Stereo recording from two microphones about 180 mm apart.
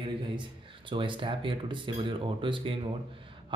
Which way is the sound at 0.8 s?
30° right (ahead or behind).